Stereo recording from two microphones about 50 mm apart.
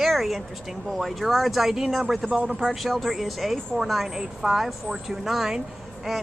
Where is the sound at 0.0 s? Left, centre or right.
Centre.